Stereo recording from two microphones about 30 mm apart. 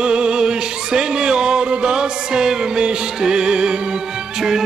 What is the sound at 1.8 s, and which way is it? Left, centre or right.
Music, right.